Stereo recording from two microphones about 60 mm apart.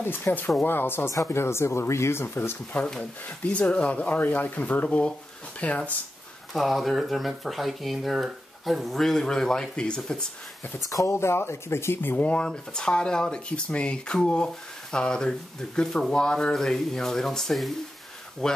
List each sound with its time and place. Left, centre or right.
0.0 s speech: left
1.1 s speech: left
2.2 s speech: left
3.3 s speech: left
6.5 s speech: centre
10.9 s speech: left
11.1 s speech: left
12.2 s speech: centre